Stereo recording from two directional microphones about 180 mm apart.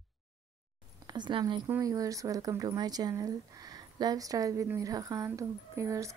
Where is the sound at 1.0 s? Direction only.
25° right (ahead or behind).